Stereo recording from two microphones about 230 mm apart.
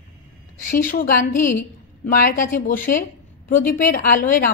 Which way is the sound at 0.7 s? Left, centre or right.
Left.